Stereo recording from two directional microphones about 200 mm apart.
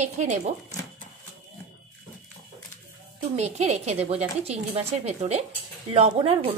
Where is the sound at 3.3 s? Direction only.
35° right (ahead or behind).